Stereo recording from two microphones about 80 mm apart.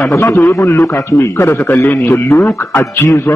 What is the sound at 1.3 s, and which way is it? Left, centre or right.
A man's voice, left.